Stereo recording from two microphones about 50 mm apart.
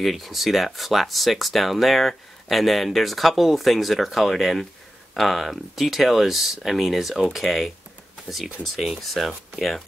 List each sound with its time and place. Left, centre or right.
0.0 s speech: centre
8.7 s speech: centre